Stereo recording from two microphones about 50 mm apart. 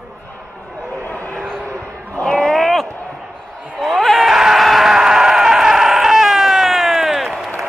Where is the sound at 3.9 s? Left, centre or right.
Centre.